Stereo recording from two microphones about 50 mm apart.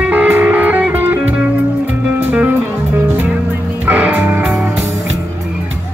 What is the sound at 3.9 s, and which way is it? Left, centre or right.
Music, right.